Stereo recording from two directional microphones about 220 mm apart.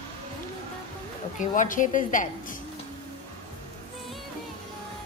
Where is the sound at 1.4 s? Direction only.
35° left (ahead or behind).